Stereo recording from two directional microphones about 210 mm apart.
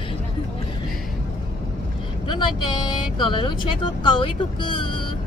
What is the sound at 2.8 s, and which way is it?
Speech, 20° left (ahead or behind).